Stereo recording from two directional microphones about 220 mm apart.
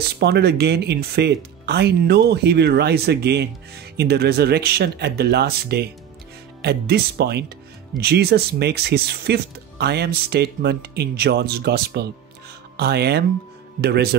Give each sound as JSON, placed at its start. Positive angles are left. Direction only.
{"t": 0.2, "sound": "a man's voice", "side_deg": -50}